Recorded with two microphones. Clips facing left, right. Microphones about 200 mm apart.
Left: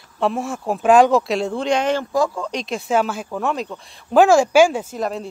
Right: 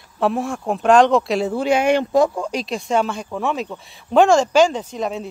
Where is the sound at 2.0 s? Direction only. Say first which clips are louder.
Right 4 dB; 20° right (ahead or behind).